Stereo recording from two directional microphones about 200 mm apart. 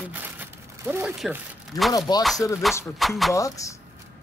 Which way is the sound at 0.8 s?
10° right (ahead or behind).